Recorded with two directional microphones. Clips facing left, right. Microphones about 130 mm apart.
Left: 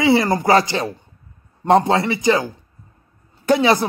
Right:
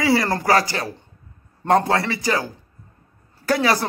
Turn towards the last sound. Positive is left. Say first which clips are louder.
# left 4 dB
turn(degrees=20)  # may be behind; listen again after turning